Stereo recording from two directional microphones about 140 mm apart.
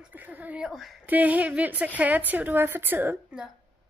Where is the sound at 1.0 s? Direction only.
10° right (ahead or behind).